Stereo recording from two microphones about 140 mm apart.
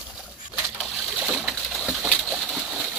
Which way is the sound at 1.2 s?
5° right (ahead or behind).